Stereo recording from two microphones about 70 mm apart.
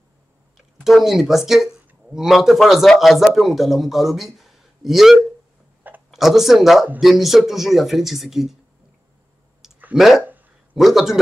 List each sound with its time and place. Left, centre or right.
0.8 s a man's voice: centre
6.1 s speech: centre
9.6 s clicking: centre
9.9 s speech: centre
10.2 s a sound: right
10.8 s speech: centre